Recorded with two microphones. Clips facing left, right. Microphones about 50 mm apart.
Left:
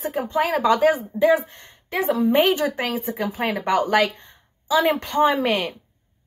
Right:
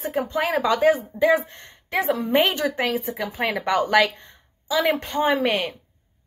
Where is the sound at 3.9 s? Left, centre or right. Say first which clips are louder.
Right 1 dB; right.